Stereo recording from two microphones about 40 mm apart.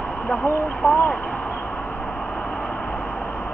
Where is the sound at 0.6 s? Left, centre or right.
Left.